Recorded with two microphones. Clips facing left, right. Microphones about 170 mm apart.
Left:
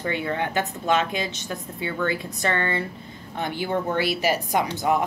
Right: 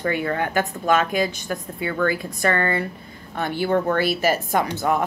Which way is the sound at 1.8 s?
25° left (ahead or behind).